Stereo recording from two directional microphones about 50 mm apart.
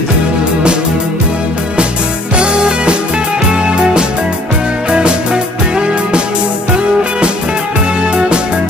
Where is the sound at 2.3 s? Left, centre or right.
Centre.